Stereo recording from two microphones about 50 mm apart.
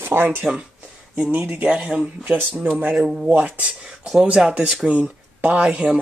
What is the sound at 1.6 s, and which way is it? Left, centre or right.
Speech, right.